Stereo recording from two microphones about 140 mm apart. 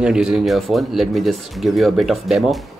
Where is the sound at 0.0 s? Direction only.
5° right (ahead or behind).